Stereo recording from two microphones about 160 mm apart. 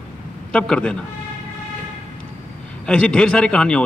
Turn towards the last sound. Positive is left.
turn(degrees=5)  # may be behind; listen again after turning